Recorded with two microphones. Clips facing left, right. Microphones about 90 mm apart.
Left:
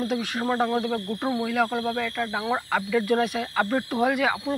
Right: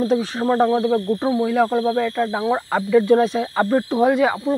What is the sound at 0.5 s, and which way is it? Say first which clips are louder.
Speech: right 8 dB; 10° right (ahead or behind).